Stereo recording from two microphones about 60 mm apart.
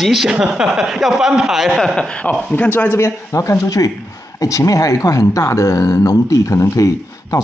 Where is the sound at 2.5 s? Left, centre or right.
Left.